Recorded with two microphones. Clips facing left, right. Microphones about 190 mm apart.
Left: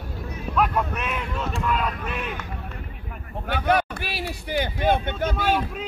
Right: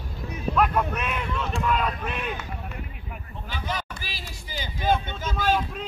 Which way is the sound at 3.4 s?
65° left (ahead or behind).